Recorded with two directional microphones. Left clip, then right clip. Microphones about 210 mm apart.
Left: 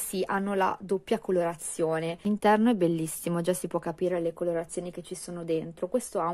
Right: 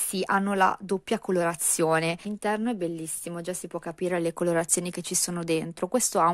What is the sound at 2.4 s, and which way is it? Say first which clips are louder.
A woman's voice: left 7 dB; centre (ahead or behind).